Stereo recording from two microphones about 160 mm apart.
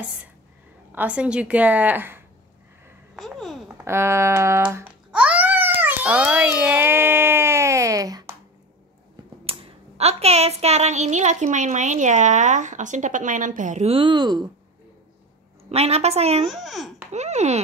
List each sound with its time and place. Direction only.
0.9 s a woman's voice: 10° right (ahead or behind)
3.2 s babbling: centre (ahead or behind)
3.8 s a woman's voice: 15° right (ahead or behind)
5.1 s babbling: 10° right (ahead or behind); by 8.3 s 25° right (ahead or behind)
9.5 s a sound: 40° right (ahead or behind)
15.7 s a woman's voice: 40° right (ahead or behind)
16.4 s a child's voice: centre (ahead or behind)
17.1 s a sound: 45° right (ahead or behind)